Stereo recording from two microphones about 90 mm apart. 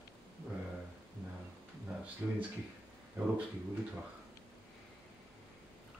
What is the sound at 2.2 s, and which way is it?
Speech, 25° right (ahead or behind).